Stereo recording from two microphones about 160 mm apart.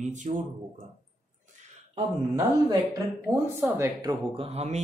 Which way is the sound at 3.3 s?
15° right (ahead or behind).